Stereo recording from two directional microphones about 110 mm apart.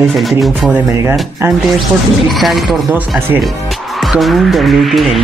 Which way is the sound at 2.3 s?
Centre (ahead or behind).